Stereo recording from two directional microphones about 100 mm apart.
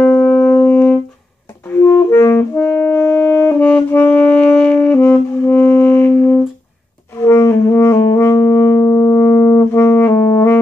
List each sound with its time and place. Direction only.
0.0 s music: 15° left (ahead or behind)
1.7 s clarinet: 20° left (ahead or behind)
2.3 s saxophone: 20° left (ahead or behind)
5.5 s music: 20° left (ahead or behind)
7.2 s brass instrument: 25° left (ahead or behind)